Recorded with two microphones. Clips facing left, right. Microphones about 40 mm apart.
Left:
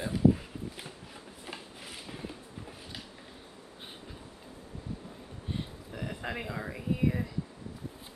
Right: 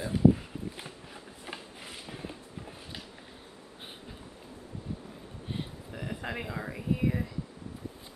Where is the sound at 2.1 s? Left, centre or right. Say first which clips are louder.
Even; centre.